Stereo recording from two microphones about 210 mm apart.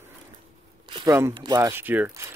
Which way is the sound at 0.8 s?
20° right (ahead or behind).